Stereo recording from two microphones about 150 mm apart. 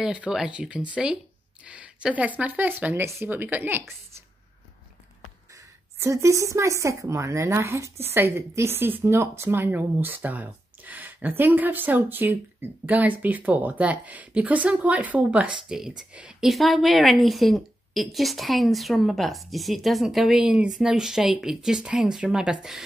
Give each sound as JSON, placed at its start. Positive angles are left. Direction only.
{"t": 0.0, "sound": "speech", "side_deg": -5}
{"t": 5.9, "sound": "a woman's voice", "side_deg": -20}